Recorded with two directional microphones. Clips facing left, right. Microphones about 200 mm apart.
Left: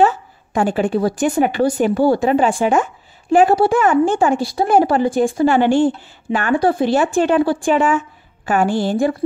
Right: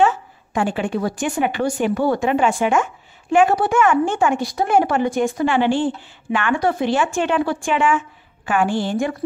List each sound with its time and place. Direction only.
0.0 s a woman's voice: 40° left (ahead or behind)